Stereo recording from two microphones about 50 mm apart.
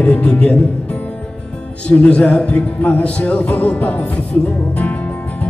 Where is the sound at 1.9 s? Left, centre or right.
Left.